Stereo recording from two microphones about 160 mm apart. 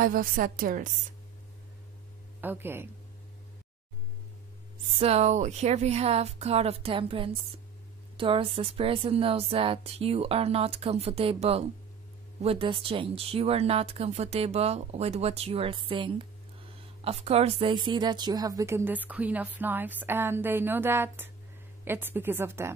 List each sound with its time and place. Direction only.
0.0 s a woman's voice: 60° right (ahead or behind)
2.4 s speech: 15° right (ahead or behind)
5.0 s speech: 45° right (ahead or behind); by 22.7 s 15° right (ahead or behind)